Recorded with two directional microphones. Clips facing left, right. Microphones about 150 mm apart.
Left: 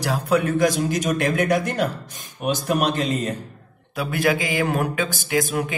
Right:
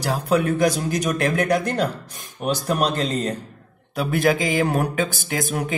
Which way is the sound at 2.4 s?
35° right (ahead or behind).